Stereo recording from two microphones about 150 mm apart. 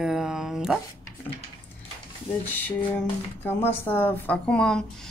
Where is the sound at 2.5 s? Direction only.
10° left (ahead or behind).